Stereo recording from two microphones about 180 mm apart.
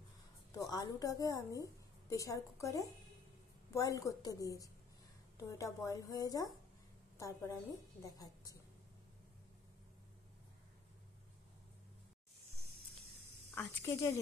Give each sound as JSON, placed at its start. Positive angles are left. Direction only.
{"t": 0.5, "sound": "a woman's voice", "side_deg": 20}
{"t": 13.6, "sound": "a woman's voice", "side_deg": 15}